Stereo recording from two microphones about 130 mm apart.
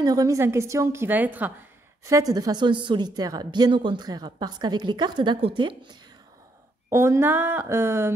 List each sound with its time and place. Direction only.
0.0 s a woman's voice: 30° right (ahead or behind)
2.0 s a woman's voice: 25° right (ahead or behind)
6.9 s speech: 20° right (ahead or behind)